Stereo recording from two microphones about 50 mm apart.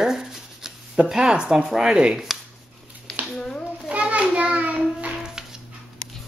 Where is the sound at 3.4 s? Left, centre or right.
Centre.